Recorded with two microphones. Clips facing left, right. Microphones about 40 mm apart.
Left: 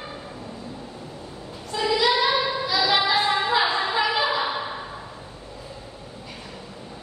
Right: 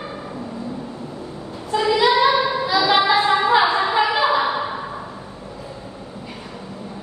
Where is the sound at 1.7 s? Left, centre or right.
Centre.